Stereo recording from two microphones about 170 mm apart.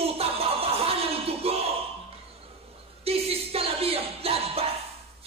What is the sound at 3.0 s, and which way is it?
Music, 35° right (ahead or behind).